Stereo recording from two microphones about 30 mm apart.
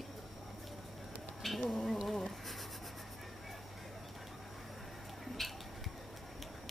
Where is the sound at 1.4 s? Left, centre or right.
Centre.